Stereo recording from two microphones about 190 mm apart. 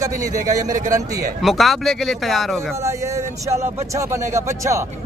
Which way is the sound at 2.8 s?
15° right (ahead or behind).